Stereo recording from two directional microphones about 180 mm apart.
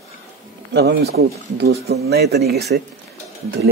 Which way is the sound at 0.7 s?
65° right (ahead or behind).